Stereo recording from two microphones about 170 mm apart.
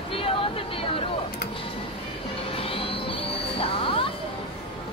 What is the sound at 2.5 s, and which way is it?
Music, 35° left (ahead or behind).